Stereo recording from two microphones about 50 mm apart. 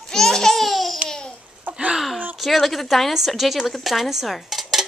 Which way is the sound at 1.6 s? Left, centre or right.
Right.